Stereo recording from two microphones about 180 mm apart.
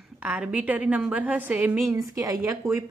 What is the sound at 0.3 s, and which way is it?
A woman's voice, 5° right (ahead or behind).